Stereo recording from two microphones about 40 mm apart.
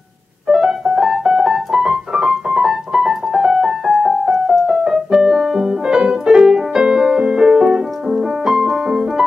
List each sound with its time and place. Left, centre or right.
0.5 s keyboard: centre
5.1 s french horn: centre
5.9 s music: right